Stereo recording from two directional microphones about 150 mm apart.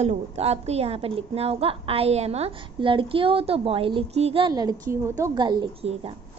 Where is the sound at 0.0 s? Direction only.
45° right (ahead or behind).